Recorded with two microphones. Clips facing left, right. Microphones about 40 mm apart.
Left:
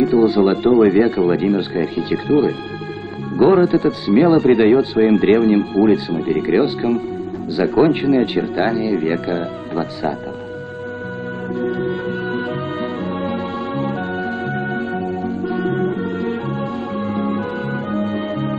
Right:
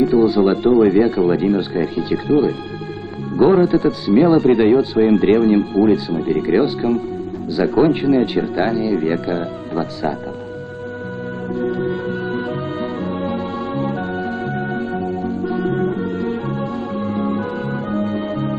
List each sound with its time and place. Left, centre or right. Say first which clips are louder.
0.1 s speech: even; centre
11.6 s music: even; centre